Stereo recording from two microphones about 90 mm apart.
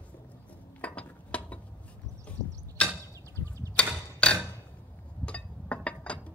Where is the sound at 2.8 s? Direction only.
10° left (ahead or behind).